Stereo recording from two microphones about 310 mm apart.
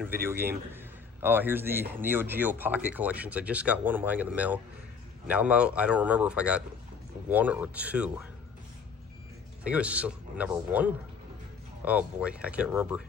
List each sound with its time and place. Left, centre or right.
0.0 s a man's voice: centre
9.6 s speech: centre